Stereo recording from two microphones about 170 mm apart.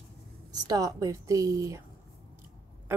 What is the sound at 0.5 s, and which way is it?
A woman's voice, 20° right (ahead or behind).